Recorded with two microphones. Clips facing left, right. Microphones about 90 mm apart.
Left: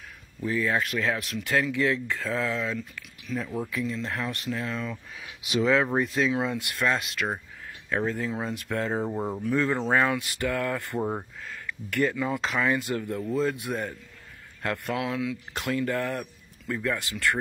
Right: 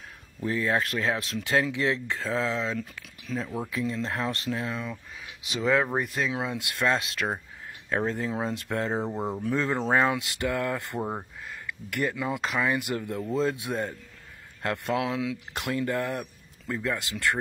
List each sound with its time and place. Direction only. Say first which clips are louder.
0.4 s speech: even; 25° right (ahead or behind)
5.5 s speech: left 2 dB; centre (ahead or behind); by 7.0 s 20° right (ahead or behind)
7.2 s speech: even; 35° right (ahead or behind)
11.0 s speech: left 2 dB; 5° right (ahead or behind)
11.4 s speech: left 1 dB; 20° right (ahead or behind)
12.3 s speech: left 1 dB; 5° right (ahead or behind)
12.6 s speech: left 1 dB; 15° right (ahead or behind)